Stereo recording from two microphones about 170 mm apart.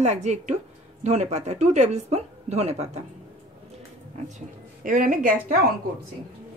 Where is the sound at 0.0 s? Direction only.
40° right (ahead or behind).